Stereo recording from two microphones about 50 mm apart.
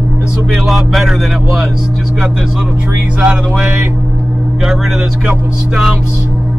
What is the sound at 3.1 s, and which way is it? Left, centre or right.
Music, centre.